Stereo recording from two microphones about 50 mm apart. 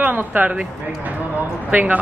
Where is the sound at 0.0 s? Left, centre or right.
Right.